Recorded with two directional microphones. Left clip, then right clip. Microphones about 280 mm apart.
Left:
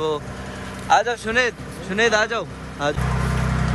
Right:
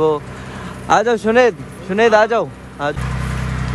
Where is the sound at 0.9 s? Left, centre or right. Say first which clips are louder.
Right 5 dB; centre.